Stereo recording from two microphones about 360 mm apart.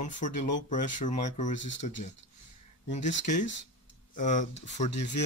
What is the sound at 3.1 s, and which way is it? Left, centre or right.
Speech, left.